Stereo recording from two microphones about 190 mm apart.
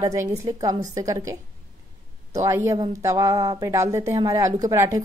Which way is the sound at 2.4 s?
15° right (ahead or behind).